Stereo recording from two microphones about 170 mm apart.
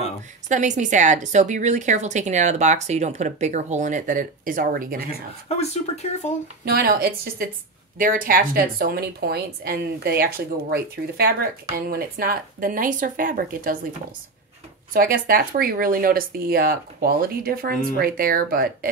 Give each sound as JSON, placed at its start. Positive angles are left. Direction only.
{"t": 0.5, "sound": "a woman's voice", "side_deg": -45}
{"t": 5.0, "sound": "speech", "side_deg": 40}
{"t": 6.6, "sound": "a woman's voice", "side_deg": -65}
{"t": 14.9, "sound": "a woman's voice", "side_deg": -55}